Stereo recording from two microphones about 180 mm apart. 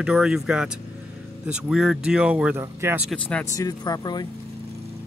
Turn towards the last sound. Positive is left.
turn(degrees=20)  # may be behind; listen again after turning